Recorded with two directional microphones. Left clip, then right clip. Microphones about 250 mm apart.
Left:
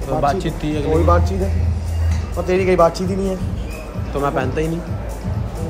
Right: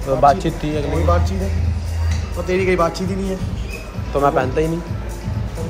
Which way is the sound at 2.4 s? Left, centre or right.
Left.